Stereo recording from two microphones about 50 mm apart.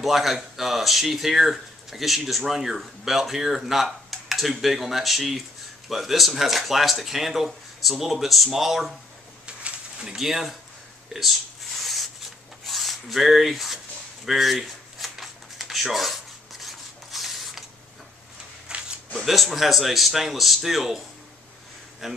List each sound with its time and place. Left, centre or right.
0.0 s speech: centre
9.5 s a sound: right
10.0 s speech: centre
11.8 s a sound: centre
12.6 s speech: centre
14.2 s shuffling cards: centre
18.7 s a sound: centre
19.1 s speech: centre
22.0 s speech: centre